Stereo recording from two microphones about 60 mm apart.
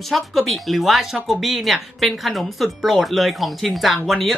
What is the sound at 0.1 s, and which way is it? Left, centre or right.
Speech, centre.